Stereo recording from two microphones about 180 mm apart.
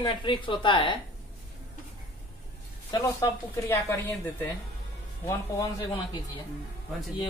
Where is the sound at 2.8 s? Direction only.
20° left (ahead or behind).